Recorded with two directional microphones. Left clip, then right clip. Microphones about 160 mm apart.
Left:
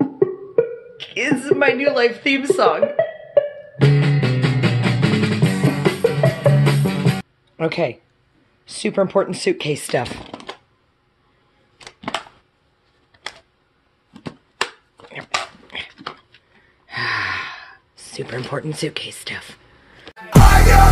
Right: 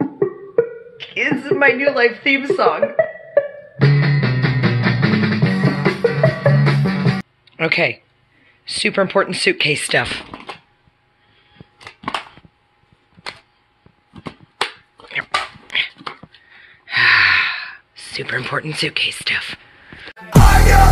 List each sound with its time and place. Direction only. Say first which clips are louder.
0.0 s music: left 1 dB; 70° left (ahead or behind)
0.9 s a woman's voice: right 2 dB; 15° left (ahead or behind)
3.8 s music: right 1 dB; 55° left (ahead or behind)
7.5 s a woman's voice: right 4 dB; 15° left (ahead or behind)
14.6 s a sound: right 2 dB; 20° left (ahead or behind)
16.8 s gasp: right 10 dB; 20° left (ahead or behind)
18.3 s speech: right 5 dB; 15° left (ahead or behind)
20.2 s music: even; centre (ahead or behind)